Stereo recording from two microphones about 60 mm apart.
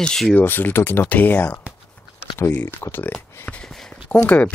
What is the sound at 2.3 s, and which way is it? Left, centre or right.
Speech, left.